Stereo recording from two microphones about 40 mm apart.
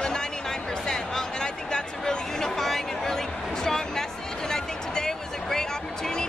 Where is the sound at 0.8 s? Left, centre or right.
Centre.